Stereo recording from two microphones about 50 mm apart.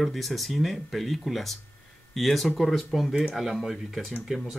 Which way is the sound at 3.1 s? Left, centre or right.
Centre.